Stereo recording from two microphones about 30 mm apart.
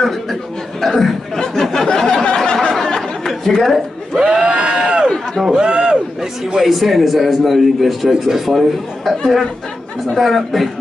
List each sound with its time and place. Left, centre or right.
0.0 s speech: centre
2.2 s a sound: left
2.7 s chatter: centre
4.2 s a sound: right
4.5 s crowd: right
5.5 s a sound: right
6.4 s speech: centre
6.7 s a man's voice: centre
10.1 s a man's voice: centre